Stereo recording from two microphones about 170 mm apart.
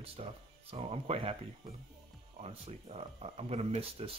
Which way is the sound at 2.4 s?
40° right (ahead or behind).